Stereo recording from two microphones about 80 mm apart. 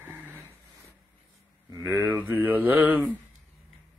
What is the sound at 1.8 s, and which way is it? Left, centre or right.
Mantra, right.